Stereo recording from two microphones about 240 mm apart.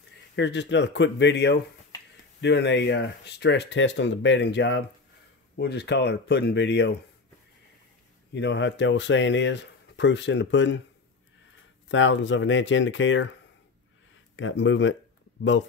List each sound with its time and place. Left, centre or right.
0.4 s speech: left
8.3 s speech: left
11.9 s speech: left
14.3 s speech: left